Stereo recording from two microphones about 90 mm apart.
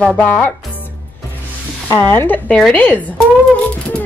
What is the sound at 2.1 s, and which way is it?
Speech, 25° left (ahead or behind).